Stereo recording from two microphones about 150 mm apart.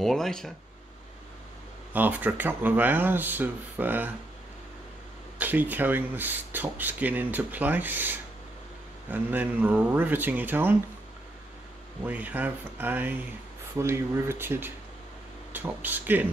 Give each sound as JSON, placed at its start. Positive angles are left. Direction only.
{"t": 0.0, "sound": "speech", "side_deg": 0}
{"t": 2.0, "sound": "speech", "side_deg": -10}
{"t": 5.4, "sound": "speech", "side_deg": -10}
{"t": 12.0, "sound": "speech", "side_deg": -10}